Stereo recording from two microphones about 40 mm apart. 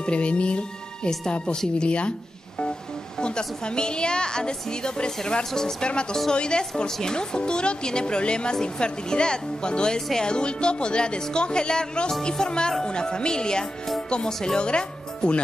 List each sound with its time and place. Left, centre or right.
0.0 s speech: left
3.2 s speech: left
6.3 s speech: left